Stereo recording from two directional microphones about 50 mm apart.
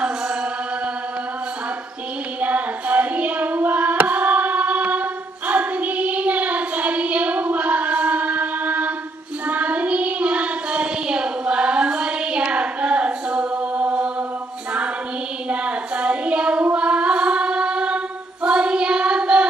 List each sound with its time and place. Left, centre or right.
2.4 s music: right
5.5 s child singing: right
15.5 s a sound: right
16.7 s a capella: right